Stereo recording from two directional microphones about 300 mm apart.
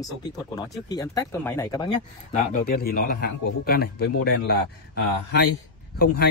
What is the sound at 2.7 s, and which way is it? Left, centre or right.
A man's voice, left.